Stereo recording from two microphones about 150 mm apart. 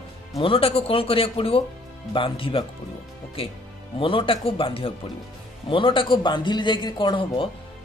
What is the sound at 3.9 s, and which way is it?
Speech, 35° left (ahead or behind).